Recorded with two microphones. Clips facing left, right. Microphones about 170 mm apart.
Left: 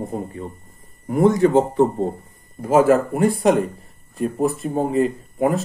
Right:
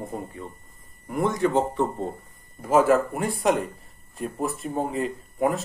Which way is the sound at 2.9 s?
45° left (ahead or behind).